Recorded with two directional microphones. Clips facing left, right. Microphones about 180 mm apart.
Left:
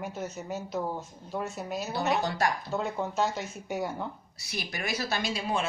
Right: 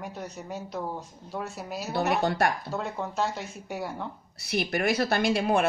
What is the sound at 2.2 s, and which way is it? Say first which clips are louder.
Speech: right 4 dB; 60° right (ahead or behind).